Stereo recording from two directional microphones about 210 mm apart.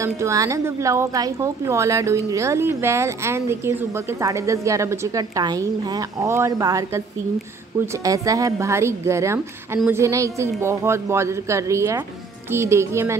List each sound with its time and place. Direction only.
0.0 s a woman's voice: 15° right (ahead or behind)
7.8 s a woman's voice: 15° right (ahead or behind)